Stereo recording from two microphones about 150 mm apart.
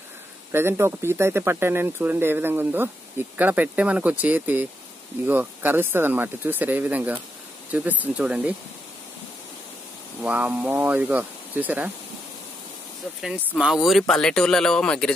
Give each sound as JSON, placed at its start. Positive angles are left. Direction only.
{"t": 0.5, "sound": "speech", "side_deg": -15}
{"t": 10.2, "sound": "speech", "side_deg": -10}
{"t": 13.6, "sound": "speech", "side_deg": 0}